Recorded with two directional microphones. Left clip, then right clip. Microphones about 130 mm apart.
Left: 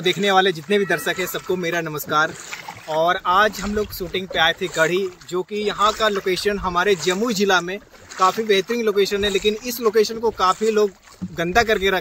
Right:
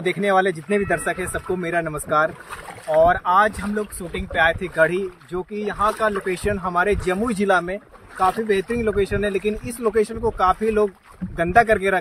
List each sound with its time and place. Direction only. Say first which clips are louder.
0.0 s speech: left 2 dB; centre (ahead or behind)
5.5 s speech: left 2 dB; 10° left (ahead or behind)
7.2 s speech: left 1 dB; 15° right (ahead or behind)